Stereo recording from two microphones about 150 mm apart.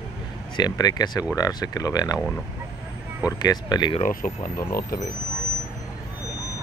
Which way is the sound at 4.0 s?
65° left (ahead or behind).